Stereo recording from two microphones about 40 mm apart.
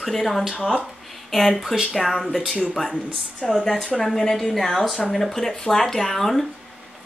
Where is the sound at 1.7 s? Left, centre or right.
Centre.